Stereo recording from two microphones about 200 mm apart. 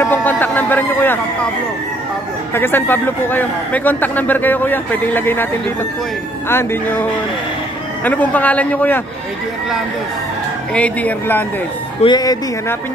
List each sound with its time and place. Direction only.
0.0 s a sound: 10° left (ahead or behind)
2.5 s a man's voice: 10° left (ahead or behind)
6.5 s a man's voice: 10° left (ahead or behind)
10.7 s a man's voice: 5° left (ahead or behind)
12.0 s speech: 20° left (ahead or behind)